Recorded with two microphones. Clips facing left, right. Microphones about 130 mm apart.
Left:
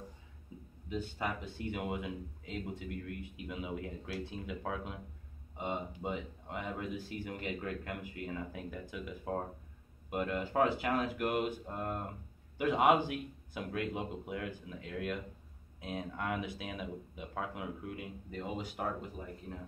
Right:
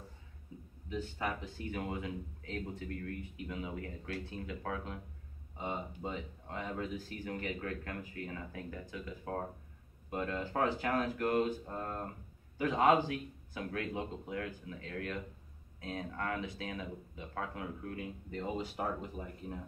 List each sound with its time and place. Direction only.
0.8 s speech: 15° left (ahead or behind); by 19.2 s centre (ahead or behind)